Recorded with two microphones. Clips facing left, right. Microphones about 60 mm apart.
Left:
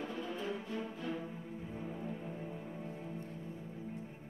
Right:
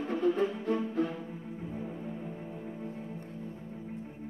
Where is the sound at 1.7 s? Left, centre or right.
Centre.